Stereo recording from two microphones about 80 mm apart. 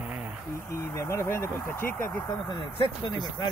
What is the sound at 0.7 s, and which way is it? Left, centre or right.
Speech, left.